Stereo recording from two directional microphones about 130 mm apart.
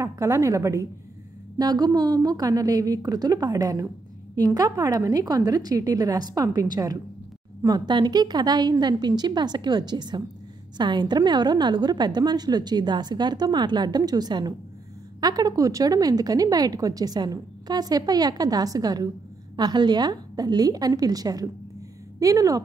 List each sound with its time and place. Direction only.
0.0 s a woman's voice: 25° right (ahead or behind)